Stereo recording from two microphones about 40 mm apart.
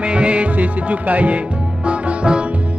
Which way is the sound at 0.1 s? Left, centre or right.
Right.